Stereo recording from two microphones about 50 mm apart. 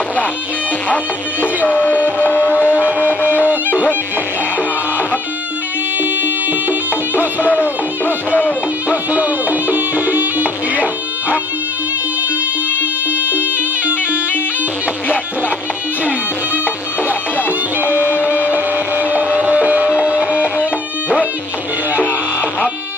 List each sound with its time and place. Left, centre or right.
0.8 s music: left
3.4 s music: right
5.9 s music: right
7.5 s music: left
8.8 s music: right
13.4 s music: right
18.5 s a sound: right
19.3 s music: right